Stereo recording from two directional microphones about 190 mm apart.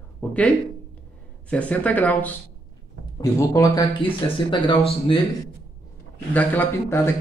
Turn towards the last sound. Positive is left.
turn(degrees=10)  # may be behind; listen again after turning